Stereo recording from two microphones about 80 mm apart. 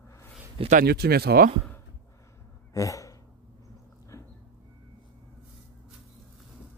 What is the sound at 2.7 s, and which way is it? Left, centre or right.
Gasp, left.